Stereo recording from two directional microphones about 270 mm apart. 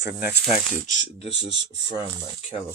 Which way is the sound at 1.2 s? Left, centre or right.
Right.